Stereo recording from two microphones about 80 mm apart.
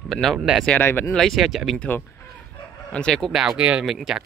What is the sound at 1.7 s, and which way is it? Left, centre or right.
Fowl, left.